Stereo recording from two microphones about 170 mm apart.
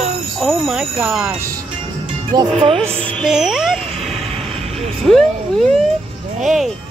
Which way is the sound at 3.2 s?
5° right (ahead or behind).